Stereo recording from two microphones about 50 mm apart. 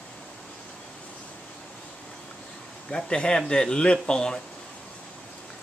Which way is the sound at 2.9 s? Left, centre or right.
Centre.